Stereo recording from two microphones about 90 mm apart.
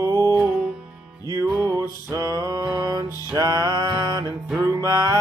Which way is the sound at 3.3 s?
45° right (ahead or behind).